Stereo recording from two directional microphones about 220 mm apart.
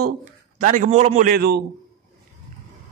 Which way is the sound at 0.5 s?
35° right (ahead or behind).